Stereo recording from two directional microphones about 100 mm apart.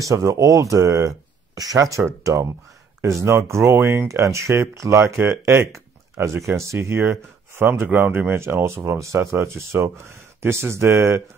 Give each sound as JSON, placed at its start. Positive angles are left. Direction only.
{"t": 0.0, "sound": "speech", "side_deg": -30}